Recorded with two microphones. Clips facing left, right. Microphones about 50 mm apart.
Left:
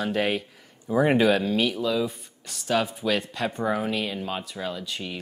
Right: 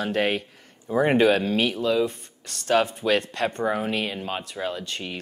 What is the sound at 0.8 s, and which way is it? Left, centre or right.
Speech, centre.